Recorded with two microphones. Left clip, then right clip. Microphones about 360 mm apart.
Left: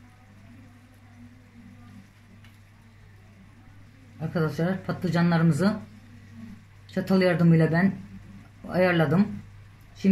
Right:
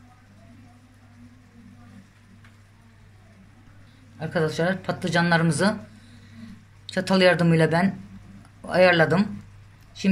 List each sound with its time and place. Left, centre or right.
4.2 s speech: right
6.9 s speech: right